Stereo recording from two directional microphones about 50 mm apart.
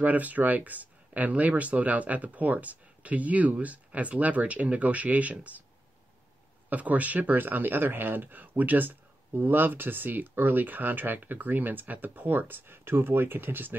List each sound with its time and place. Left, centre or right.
0.0 s speech: right
6.7 s speech: right